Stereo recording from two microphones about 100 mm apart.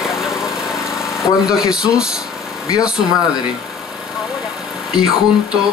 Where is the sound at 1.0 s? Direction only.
5° right (ahead or behind).